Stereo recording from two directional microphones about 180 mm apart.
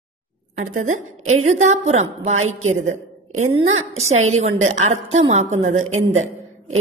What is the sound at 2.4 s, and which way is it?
Speech, 90° right.